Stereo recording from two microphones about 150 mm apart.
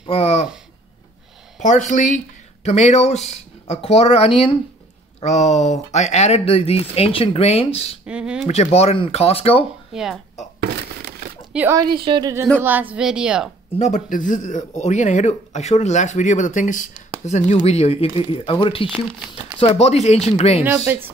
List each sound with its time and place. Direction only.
0.1 s speech: 45° left (ahead or behind)
1.6 s speech: 55° left (ahead or behind)
8.0 s speech: 5° right (ahead or behind)
8.5 s speech: 45° left (ahead or behind)
9.9 s a woman's voice: centre (ahead or behind)
11.5 s speech: 15° right (ahead or behind)
11.8 s a woman's voice: 35° right (ahead or behind)
12.9 s a woman's voice: 5° right (ahead or behind)
13.7 s speech: 50° left (ahead or behind); by 18.9 s 35° left (ahead or behind)
18.9 s speech: 10° right (ahead or behind)
19.6 s speech: 45° left (ahead or behind)
20.6 s speech: 15° right (ahead or behind)